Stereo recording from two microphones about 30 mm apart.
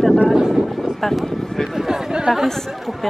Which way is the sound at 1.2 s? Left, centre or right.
Centre.